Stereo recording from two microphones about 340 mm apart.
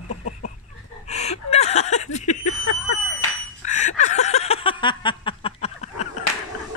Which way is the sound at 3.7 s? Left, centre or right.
Left.